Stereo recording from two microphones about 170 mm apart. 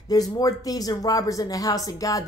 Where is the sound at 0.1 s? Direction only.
20° left (ahead or behind).